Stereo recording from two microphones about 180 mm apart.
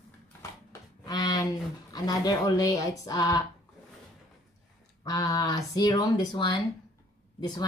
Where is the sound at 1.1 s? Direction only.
20° left (ahead or behind).